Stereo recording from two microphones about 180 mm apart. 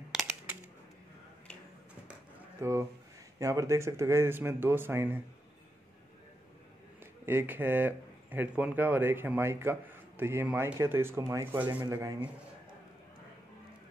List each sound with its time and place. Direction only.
0.1 s a sound: centre (ahead or behind)
2.6 s speech: 15° right (ahead or behind)
7.0 s speech: 10° right (ahead or behind)